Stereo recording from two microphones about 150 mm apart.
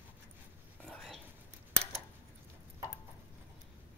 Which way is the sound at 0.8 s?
5° left (ahead or behind).